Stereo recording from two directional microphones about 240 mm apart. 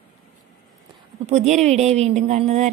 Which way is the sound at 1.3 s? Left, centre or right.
Right.